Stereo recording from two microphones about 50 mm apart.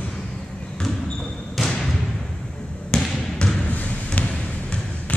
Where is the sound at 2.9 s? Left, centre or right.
Centre.